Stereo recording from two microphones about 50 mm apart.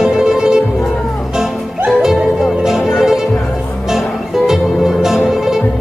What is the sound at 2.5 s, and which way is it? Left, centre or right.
Music, centre.